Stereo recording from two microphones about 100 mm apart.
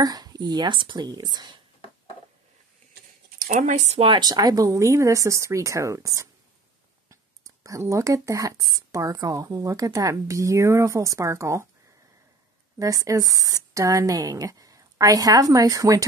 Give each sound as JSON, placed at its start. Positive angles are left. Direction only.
{"t": 0.0, "sound": "speech", "side_deg": -40}
{"t": 3.8, "sound": "speech", "side_deg": -90}
{"t": 4.1, "sound": "a woman's voice", "side_deg": -45}
{"t": 12.7, "sound": "a woman's voice", "side_deg": -35}